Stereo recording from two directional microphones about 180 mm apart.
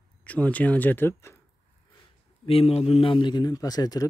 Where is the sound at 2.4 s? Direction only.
35° left (ahead or behind).